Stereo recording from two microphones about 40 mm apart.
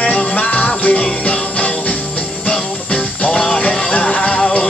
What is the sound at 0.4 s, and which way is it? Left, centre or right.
Music, left.